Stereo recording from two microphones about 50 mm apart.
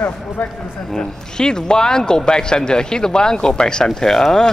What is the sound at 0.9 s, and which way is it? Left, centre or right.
Speech, centre.